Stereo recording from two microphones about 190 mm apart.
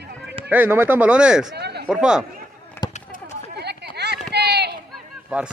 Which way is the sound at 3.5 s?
60° right (ahead or behind).